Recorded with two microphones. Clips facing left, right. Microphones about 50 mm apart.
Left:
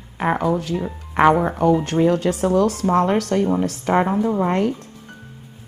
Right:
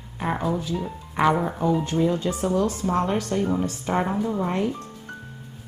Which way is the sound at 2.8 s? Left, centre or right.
Left.